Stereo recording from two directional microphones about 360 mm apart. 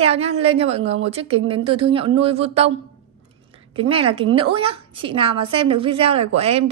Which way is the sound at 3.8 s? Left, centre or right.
Centre.